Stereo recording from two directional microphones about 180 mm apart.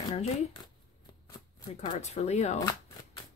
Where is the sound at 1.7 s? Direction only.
40° left (ahead or behind).